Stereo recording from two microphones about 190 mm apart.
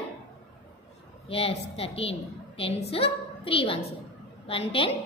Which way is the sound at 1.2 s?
30° left (ahead or behind).